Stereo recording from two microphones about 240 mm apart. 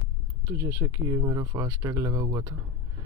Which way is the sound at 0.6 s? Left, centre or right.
Centre.